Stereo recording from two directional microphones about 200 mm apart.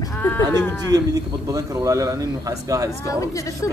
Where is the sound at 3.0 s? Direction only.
15° left (ahead or behind).